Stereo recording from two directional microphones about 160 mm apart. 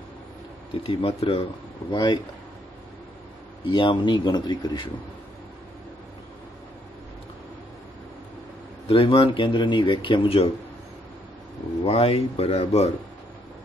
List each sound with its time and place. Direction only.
0.8 s speech: 35° left (ahead or behind)
3.6 s speech: 30° left (ahead or behind)
8.8 s speech: 35° left (ahead or behind)
11.8 s speech: 40° left (ahead or behind)